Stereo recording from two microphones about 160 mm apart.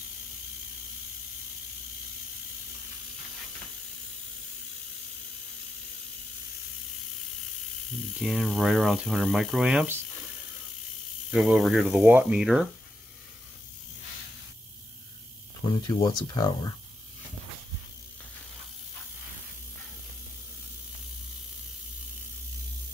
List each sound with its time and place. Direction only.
8.2 s speech: centre (ahead or behind)
11.2 s speech: 5° right (ahead or behind)
15.9 s speech: 25° left (ahead or behind)